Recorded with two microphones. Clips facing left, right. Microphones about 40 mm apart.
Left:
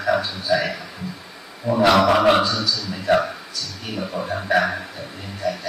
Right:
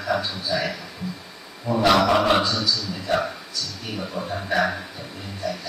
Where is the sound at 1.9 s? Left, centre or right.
Centre.